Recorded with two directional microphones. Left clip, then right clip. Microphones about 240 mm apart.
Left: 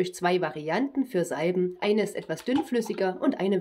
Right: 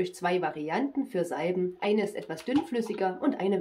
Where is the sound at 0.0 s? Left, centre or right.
Left.